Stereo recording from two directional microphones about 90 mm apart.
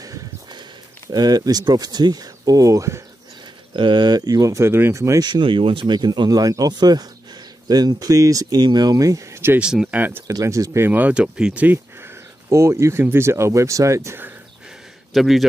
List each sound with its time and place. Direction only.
0.0 s a sound: 50° right (ahead or behind)
1.1 s speech: 45° right (ahead or behind)
3.7 s speech: 60° right (ahead or behind); by 5.2 s 35° right (ahead or behind)
5.2 s speech: 60° right (ahead or behind); by 5.9 s 80° right
5.9 s speech: 55° right (ahead or behind); by 9.6 s 30° right (ahead or behind)
9.6 s speech: 10° right (ahead or behind)
9.8 s speech: 20° right (ahead or behind)
10.2 s speech: 35° right (ahead or behind)
10.9 s speech: 15° right (ahead or behind); by 14.2 s 35° right (ahead or behind)
15.1 s a man's voice: centre (ahead or behind)